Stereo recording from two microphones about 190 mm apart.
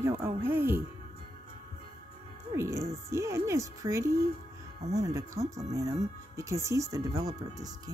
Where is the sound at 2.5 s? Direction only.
15° right (ahead or behind).